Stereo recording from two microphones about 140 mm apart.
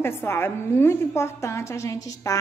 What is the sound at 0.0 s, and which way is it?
A woman's voice, 15° left (ahead or behind).